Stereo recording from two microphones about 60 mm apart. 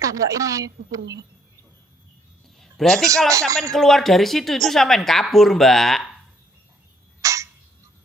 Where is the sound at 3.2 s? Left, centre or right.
Right.